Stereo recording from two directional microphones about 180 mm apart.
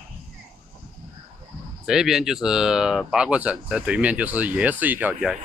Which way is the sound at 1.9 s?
5° right (ahead or behind).